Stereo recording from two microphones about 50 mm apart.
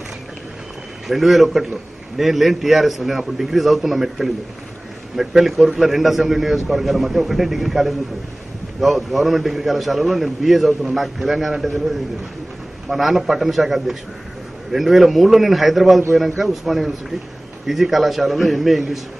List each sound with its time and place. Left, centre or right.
1.0 s a man's voice: centre
12.9 s a man's voice: centre